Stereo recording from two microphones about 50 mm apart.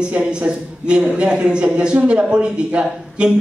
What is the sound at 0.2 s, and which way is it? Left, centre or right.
A man's voice, centre.